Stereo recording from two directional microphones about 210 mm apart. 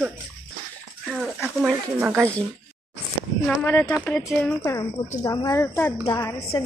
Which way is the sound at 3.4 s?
10° left (ahead or behind).